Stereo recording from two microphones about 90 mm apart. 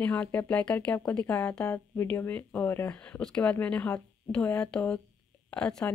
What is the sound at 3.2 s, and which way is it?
Speech, 15° left (ahead or behind).